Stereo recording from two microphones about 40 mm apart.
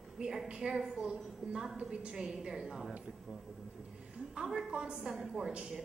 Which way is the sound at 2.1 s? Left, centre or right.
Centre.